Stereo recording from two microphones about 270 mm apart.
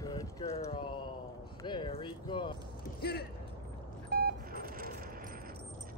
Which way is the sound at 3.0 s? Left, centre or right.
Left.